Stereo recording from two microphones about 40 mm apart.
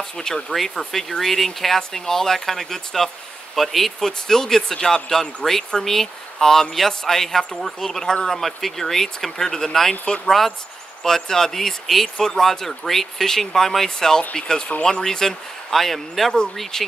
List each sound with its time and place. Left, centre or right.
0.5 s speech: centre
8.4 s speech: centre